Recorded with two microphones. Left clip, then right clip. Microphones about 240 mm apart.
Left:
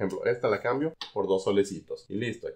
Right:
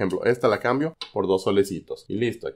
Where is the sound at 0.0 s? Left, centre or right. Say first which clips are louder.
Right 6 dB; right.